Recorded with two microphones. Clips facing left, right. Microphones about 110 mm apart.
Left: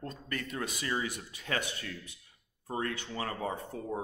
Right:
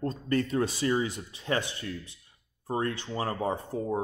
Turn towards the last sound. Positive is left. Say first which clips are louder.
# right 6 dB
turn(degrees=-30)  # may be behind; listen again after turning